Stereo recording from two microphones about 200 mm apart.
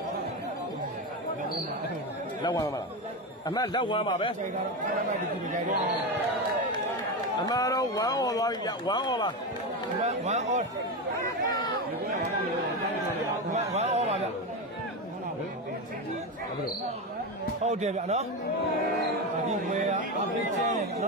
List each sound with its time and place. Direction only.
3.4 s speech: 20° left (ahead or behind)
5.1 s speech: 40° right (ahead or behind)
7.4 s speech: 20° left (ahead or behind)
10.0 s speech: 35° right (ahead or behind)
11.1 s chatter: 20° left (ahead or behind)
13.5 s a sound: 35° right (ahead or behind)
17.6 s speech: 35° right (ahead or behind)
19.7 s speech: 40° right (ahead or behind)